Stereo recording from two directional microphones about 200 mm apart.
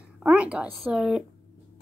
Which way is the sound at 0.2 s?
5° right (ahead or behind).